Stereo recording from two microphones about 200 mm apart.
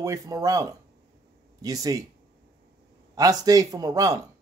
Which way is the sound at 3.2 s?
20° right (ahead or behind).